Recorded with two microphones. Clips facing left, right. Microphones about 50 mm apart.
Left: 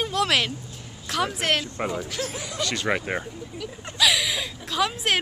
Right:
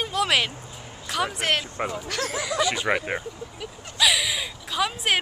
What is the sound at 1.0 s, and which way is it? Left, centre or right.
Speech, centre.